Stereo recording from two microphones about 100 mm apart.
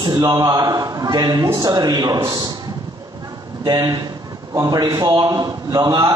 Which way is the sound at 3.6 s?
45° right (ahead or behind).